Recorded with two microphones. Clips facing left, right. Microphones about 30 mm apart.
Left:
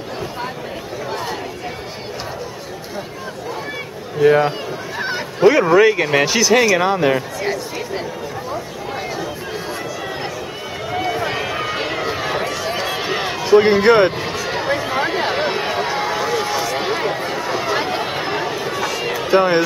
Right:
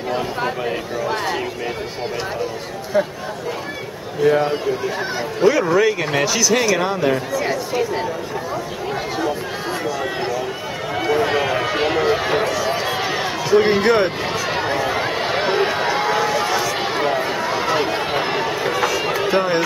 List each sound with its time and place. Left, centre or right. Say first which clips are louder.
4.2 s speech: left 3 dB; left
6.5 s speech: left 3 dB; centre
11.0 s run: right 4 dB; centre
12.5 s run: right 2 dB; centre
12.8 s run: even; centre
13.6 s speech: left 3 dB; centre
14.4 s a sound: right 1 dB; centre
14.7 s run: left 1 dB; centre
16.7 s a sound: right 1 dB; centre
17.7 s chatter: right 1 dB; centre
19.3 s speech: left 6 dB; centre